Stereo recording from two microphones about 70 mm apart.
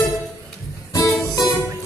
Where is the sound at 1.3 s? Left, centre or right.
Left.